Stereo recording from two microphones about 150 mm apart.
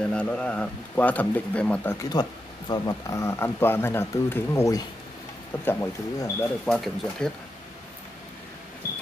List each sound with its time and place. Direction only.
0.0 s speech: 10° left (ahead or behind)
6.6 s speech: 5° left (ahead or behind)